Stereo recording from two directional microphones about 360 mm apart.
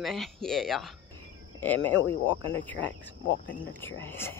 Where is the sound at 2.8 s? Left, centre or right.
Left.